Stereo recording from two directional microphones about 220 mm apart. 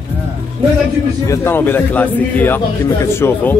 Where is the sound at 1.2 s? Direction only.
10° left (ahead or behind).